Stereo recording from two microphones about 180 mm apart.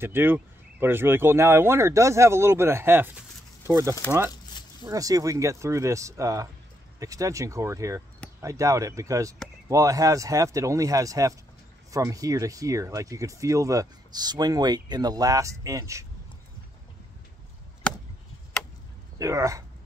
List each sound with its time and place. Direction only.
0.0 s speech: 10° right (ahead or behind)
19.1 s speech: 15° right (ahead or behind)